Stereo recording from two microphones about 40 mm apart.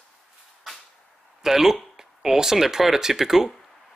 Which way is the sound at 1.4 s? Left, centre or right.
Centre.